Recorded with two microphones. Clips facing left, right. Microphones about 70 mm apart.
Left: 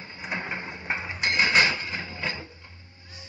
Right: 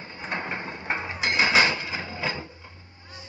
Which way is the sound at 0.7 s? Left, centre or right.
Centre.